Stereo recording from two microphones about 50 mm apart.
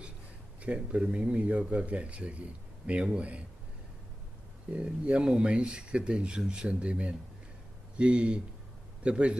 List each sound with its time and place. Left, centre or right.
0.6 s speech: right
4.7 s speech: right